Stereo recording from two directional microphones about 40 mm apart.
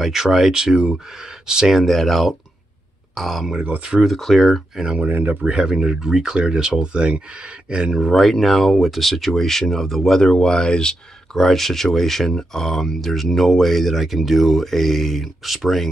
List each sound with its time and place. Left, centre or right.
0.0 s speech: centre
0.5 s speech: centre
1.7 s speech: centre
4.8 s speech: centre
5.3 s speech: right
7.9 s speech: centre
8.2 s speech: centre
11.3 s speech: centre